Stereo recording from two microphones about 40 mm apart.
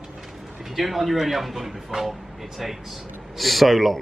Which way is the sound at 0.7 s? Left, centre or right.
Centre.